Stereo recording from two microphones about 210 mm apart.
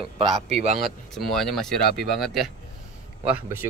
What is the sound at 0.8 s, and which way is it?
Speech, centre (ahead or behind).